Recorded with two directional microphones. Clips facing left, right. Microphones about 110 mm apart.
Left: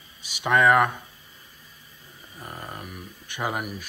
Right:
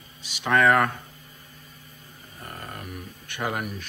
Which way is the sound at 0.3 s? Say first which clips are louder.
Left 1 dB; 15° left (ahead or behind).